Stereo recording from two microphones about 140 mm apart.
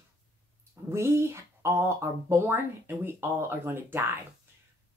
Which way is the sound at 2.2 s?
15° right (ahead or behind).